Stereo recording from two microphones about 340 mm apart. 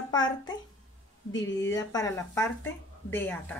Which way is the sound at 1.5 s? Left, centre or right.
Left.